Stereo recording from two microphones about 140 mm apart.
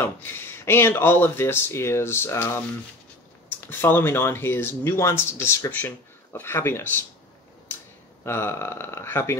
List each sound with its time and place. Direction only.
0.0 s speech: 15° left (ahead or behind)
8.3 s speech: 15° left (ahead or behind)